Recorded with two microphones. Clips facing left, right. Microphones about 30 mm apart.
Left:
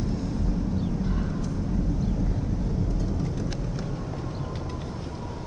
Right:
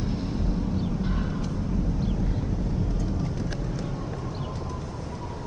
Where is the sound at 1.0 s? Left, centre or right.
Right.